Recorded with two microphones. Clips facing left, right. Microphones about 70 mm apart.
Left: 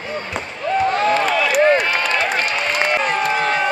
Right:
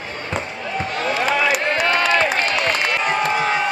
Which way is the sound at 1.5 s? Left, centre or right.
Centre.